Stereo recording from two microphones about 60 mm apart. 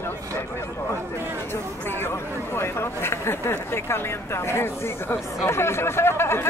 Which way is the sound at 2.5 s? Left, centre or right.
Left.